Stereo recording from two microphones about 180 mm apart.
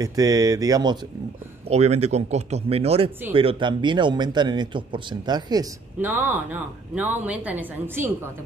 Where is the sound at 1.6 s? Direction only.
35° right (ahead or behind).